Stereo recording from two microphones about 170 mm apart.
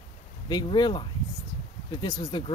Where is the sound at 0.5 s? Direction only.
25° left (ahead or behind).